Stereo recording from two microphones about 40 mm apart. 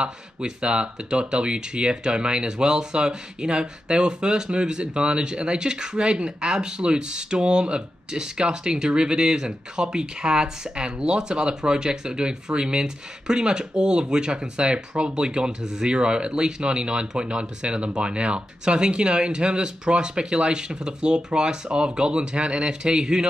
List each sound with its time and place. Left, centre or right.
0.0 s speech: right